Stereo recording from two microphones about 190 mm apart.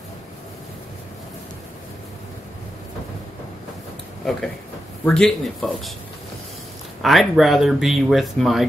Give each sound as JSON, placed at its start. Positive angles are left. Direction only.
{"t": 5.0, "sound": "speech", "side_deg": 5}
{"t": 7.0, "sound": "speech", "side_deg": 0}